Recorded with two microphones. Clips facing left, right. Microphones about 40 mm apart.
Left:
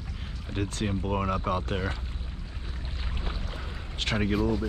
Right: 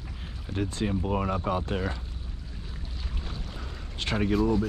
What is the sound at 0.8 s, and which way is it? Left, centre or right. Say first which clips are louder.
Speech: right 1 dB; centre.